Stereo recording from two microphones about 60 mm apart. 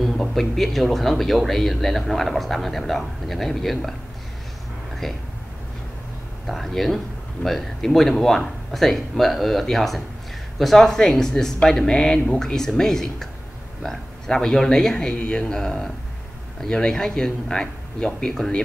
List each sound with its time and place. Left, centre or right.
0.0 s speech: centre
5.0 s speech: centre
6.4 s speech: centre